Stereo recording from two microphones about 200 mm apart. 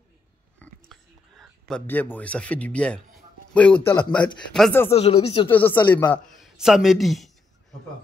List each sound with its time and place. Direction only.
0.6 s whispering: centre (ahead or behind)
3.5 s a man's voice: 5° left (ahead or behind)
4.9 s speech: 30° left (ahead or behind)
5.5 s a man's voice: 10° left (ahead or behind)